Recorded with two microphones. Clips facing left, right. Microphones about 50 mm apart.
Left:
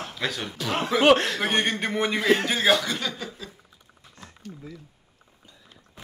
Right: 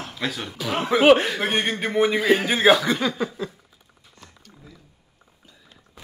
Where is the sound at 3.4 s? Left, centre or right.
Right.